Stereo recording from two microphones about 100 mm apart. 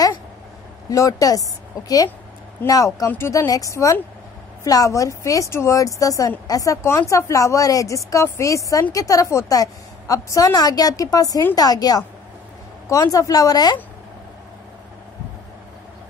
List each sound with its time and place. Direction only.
0.8 s a woman's voice: 35° left (ahead or behind)
2.6 s a woman's voice: 35° left (ahead or behind)